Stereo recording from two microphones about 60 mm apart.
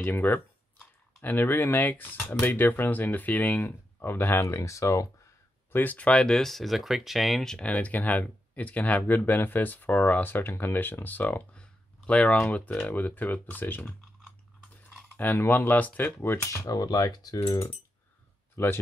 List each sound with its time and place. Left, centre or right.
0.0 s speech: left
4.0 s speech: left
4.6 s speech: left
5.7 s speech: left
6.2 s speech: centre
7.5 s speech: left
11.5 s a sound: centre
12.8 s speech: left
15.1 s speech: left
16.5 s cutlery: left
17.4 s speech: left